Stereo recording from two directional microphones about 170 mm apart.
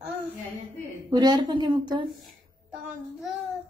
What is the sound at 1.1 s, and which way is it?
Speech, 25° right (ahead or behind).